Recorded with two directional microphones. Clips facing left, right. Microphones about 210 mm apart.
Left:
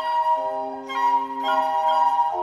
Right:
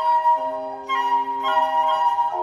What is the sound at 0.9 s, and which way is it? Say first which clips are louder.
Music: even; 40° left (ahead or behind).